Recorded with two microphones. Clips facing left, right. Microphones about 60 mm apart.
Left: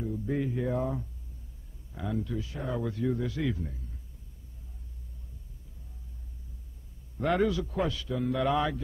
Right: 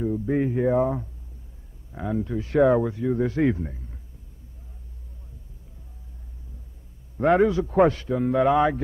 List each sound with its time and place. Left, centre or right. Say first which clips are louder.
0.0 s a man's voice: right 8 dB; right
2.4 s speech: right 17 dB; right
2.8 s speech: right 5 dB; right
3.2 s a man's voice: right 9 dB; right
7.2 s a man's voice: right 8 dB; right
7.7 s a man's voice: right 11 dB; right